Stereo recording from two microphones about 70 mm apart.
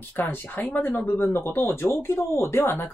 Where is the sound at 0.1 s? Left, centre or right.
Left.